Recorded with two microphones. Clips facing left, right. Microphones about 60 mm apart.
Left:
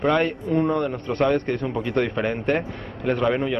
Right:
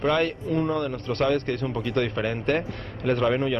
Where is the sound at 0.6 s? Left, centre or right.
Centre.